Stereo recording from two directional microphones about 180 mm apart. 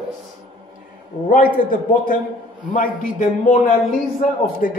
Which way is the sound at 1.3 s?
50° left (ahead or behind).